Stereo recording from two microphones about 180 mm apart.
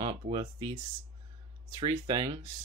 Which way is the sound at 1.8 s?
25° right (ahead or behind).